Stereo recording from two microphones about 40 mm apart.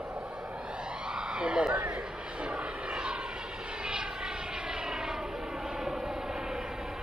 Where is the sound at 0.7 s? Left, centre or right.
Right.